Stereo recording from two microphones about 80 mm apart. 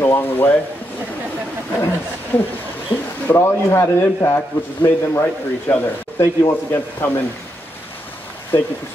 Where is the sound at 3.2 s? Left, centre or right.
Left.